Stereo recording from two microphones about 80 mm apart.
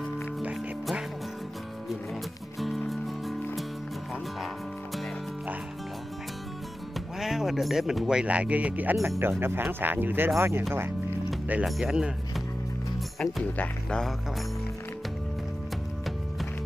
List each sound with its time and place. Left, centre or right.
2.6 s music: centre
7.2 s speech: centre
9.2 s speech: right
11.6 s speech: centre
13.2 s speech: centre